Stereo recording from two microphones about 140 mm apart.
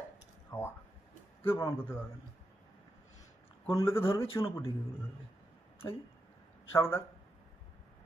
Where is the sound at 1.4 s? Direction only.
15° left (ahead or behind).